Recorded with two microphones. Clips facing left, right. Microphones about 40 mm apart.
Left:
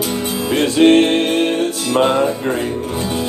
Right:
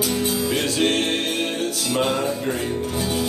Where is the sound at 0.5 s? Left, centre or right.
Left.